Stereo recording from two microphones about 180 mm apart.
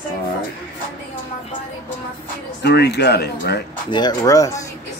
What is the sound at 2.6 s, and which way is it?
Speech, 65° left (ahead or behind).